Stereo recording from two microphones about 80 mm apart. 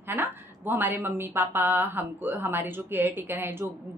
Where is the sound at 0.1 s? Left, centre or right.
Right.